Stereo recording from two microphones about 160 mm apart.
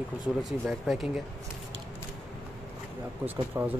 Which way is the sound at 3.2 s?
10° right (ahead or behind).